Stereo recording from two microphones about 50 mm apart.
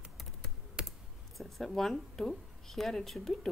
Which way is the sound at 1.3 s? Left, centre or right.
Centre.